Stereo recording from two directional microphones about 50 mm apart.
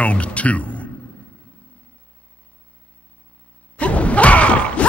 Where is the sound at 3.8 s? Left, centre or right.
Left.